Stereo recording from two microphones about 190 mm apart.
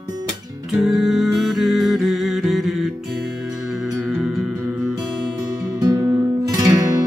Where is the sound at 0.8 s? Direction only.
Centre (ahead or behind).